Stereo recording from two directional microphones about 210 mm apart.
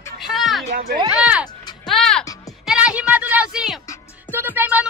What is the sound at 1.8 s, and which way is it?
Music, 5° left (ahead or behind).